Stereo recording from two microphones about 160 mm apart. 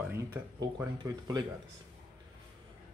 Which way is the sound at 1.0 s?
25° right (ahead or behind).